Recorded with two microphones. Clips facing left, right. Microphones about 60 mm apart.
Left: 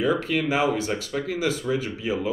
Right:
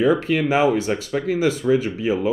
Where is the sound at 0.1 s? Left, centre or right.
Right.